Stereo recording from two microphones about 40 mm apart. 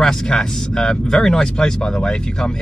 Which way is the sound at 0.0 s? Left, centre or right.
Centre.